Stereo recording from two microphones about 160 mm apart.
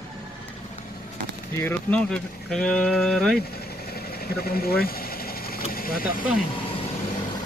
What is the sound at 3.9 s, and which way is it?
Engine, 75° left (ahead or behind).